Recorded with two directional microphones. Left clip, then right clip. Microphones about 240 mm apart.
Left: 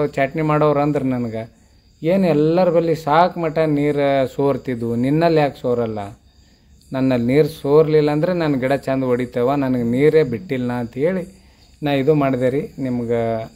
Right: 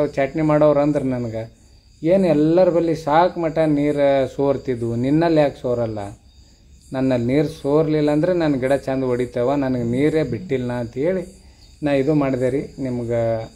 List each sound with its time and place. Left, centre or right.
0.0 s a man's voice: left